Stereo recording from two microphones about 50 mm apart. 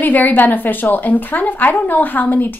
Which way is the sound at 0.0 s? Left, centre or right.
Left.